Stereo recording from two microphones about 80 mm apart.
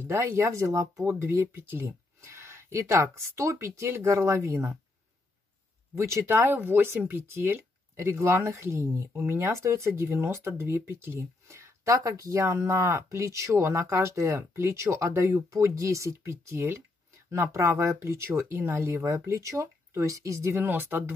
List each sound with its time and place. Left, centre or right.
0.0 s speech: right
5.9 s speech: right
19.1 s speech: right
20.6 s speech: right